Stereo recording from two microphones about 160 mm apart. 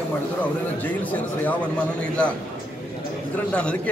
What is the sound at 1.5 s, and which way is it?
Speech, 5° left (ahead or behind).